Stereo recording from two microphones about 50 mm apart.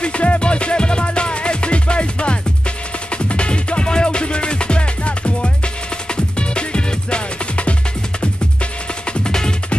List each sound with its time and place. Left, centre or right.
0.0 s music: left
6.5 s music: left
9.3 s music: centre